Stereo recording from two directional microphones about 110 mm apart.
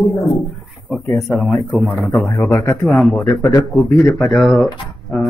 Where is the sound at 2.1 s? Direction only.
25° left (ahead or behind).